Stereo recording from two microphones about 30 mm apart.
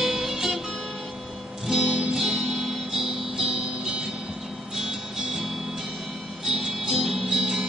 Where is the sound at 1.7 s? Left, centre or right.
Centre.